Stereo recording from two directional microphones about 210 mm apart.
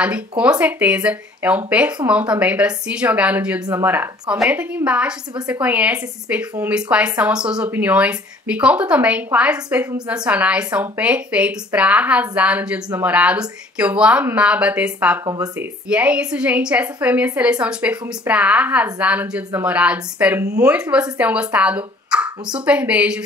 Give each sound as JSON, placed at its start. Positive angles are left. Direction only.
{"t": 0.4, "sound": "a woman's voice", "side_deg": -5}
{"t": 15.9, "sound": "a woman's voice", "side_deg": -5}